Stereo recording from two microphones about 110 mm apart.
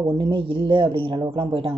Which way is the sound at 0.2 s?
50° right (ahead or behind).